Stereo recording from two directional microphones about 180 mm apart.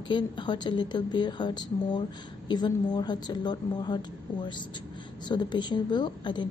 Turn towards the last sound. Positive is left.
turn(degrees=25)  # may be behind; listen again after turning